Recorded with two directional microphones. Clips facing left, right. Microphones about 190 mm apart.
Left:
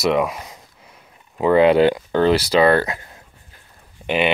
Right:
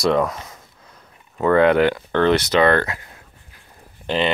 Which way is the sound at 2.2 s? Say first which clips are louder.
Even; 30° left (ahead or behind).